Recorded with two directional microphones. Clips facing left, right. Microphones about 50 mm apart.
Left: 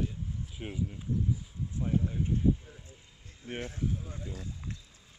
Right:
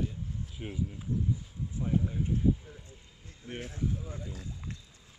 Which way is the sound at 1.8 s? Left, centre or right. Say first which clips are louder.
Even; centre.